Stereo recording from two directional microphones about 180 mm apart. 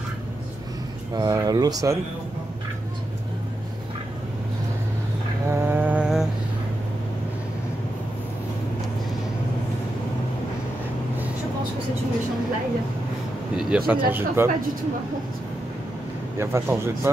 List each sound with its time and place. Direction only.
1.1 s speech: 20° right (ahead or behind)
5.5 s a sound: 15° right (ahead or behind)
13.6 s speech: 5° right (ahead or behind)
16.3 s speech: 15° right (ahead or behind)